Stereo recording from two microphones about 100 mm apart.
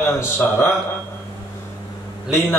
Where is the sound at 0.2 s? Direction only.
25° left (ahead or behind).